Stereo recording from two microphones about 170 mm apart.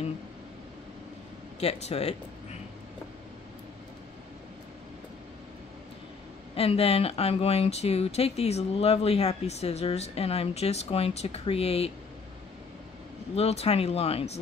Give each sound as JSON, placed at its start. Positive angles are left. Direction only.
{"t": 1.6, "sound": "speech", "side_deg": 35}
{"t": 6.5, "sound": "speech", "side_deg": 35}
{"t": 13.4, "sound": "speech", "side_deg": 35}